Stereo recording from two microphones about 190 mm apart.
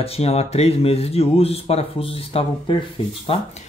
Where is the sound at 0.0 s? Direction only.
30° left (ahead or behind).